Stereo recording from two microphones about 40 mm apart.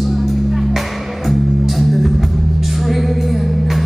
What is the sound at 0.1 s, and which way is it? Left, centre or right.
Music, centre.